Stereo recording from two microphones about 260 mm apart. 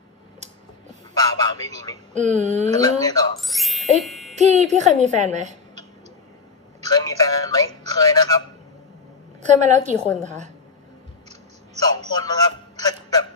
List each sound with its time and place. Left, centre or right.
1.4 s speech: centre
2.1 s a woman's voice: right
2.8 s speech: centre
3.3 s speech: centre
4.0 s music: centre
4.4 s a woman's voice: right
6.9 s speech: centre
9.4 s a woman's voice: right
11.2 s a sound: right
12.2 s speech: centre